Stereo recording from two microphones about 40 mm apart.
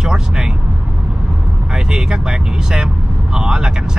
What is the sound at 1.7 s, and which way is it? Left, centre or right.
Speech, centre.